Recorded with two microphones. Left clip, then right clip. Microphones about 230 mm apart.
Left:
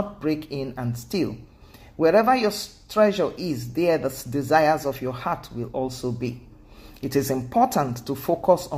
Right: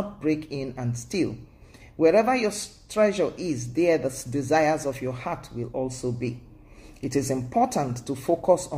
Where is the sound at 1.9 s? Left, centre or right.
Left.